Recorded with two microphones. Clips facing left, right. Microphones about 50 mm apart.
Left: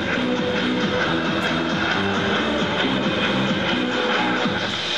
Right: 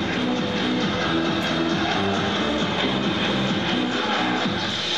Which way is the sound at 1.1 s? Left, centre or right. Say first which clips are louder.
Left 1 dB; centre.